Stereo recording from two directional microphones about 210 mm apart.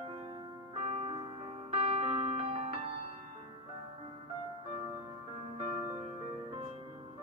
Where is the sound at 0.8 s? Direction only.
25° right (ahead or behind).